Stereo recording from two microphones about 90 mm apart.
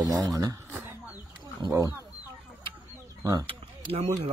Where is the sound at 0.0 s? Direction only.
40° right (ahead or behind).